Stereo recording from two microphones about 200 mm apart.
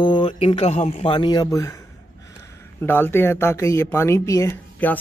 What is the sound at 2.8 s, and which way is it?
Speech, 10° left (ahead or behind).